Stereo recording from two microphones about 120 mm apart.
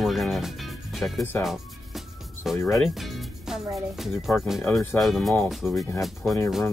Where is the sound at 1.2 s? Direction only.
20° left (ahead or behind).